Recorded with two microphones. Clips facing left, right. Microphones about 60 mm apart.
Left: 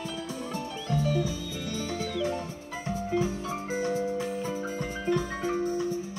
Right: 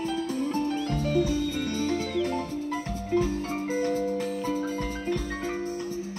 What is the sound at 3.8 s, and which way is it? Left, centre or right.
Music, right.